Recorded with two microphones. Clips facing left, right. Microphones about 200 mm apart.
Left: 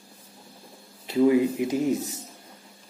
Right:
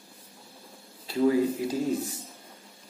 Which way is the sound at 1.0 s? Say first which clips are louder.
Left 3 dB; 20° left (ahead or behind).